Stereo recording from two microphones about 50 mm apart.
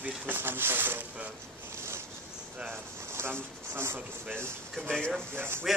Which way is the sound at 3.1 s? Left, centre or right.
Right.